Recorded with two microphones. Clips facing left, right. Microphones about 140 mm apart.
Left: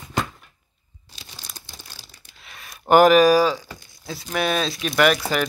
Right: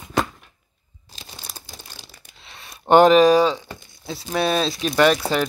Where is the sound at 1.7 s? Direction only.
25° right (ahead or behind).